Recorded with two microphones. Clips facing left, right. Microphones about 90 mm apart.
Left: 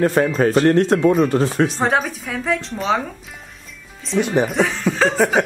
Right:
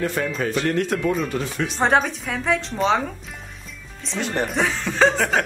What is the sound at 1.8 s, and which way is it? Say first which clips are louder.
A woman's voice: even; centre (ahead or behind).